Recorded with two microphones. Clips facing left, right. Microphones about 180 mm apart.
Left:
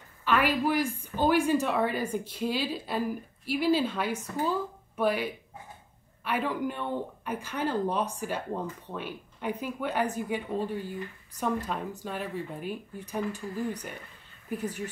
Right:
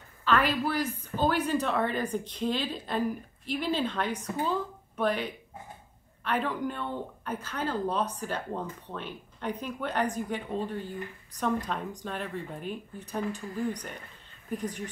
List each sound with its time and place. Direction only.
0.2 s a woman's voice: 10° left (ahead or behind)